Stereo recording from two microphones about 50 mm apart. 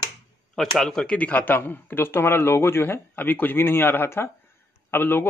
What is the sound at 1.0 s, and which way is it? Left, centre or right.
Speech, left.